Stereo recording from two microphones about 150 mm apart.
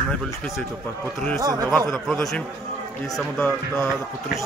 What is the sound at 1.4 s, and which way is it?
Speech, 25° right (ahead or behind).